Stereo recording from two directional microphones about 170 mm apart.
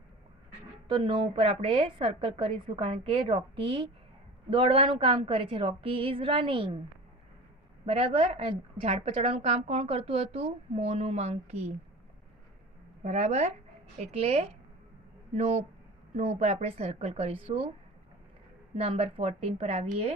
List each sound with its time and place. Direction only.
0.8 s a woman's voice: 30° right (ahead or behind)
7.8 s a woman's voice: 35° right (ahead or behind)
13.0 s a woman's voice: 45° right (ahead or behind)
18.8 s a woman's voice: 35° right (ahead or behind)